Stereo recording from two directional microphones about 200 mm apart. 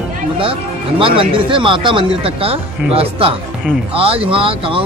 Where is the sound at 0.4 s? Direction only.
25° right (ahead or behind).